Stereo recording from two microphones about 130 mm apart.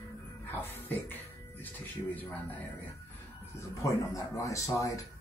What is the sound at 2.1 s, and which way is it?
Speech, 15° left (ahead or behind).